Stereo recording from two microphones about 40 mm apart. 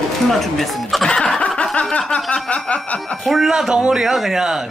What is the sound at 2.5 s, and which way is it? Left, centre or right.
Snicker, left.